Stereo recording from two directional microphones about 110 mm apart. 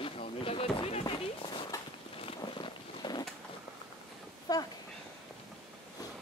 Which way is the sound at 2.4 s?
40° left (ahead or behind).